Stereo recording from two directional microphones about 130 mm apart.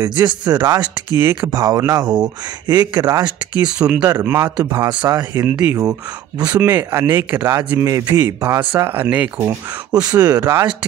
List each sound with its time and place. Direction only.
0.0 s speech: 30° right (ahead or behind)
3.5 s speech: 10° right (ahead or behind); by 10.4 s 30° right (ahead or behind)
10.4 s speech: 20° right (ahead or behind)